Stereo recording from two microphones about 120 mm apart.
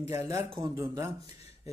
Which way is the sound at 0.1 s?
20° right (ahead or behind).